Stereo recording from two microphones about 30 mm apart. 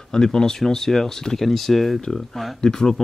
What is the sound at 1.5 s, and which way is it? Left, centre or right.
Speech, centre.